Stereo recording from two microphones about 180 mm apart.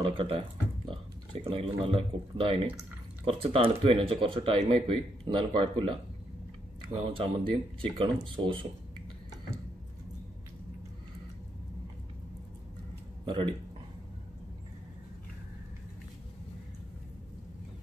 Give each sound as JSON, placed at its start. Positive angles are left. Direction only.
{"t": 0.0, "sound": "speech", "side_deg": -30}
{"t": 13.2, "sound": "speech", "side_deg": -25}